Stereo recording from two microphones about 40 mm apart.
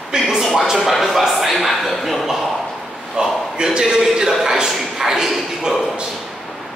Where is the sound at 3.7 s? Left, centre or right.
Centre.